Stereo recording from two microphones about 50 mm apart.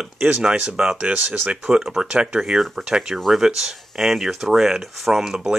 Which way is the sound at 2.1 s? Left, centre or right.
Right.